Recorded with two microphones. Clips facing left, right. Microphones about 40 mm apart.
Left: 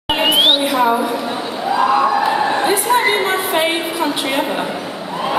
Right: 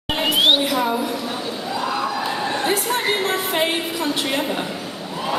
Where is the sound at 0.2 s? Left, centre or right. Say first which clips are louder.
Left 3 dB; centre.